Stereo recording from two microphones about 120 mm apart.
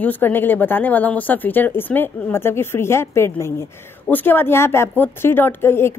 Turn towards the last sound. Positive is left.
turn(degrees=20)  # may be behind; listen again after turning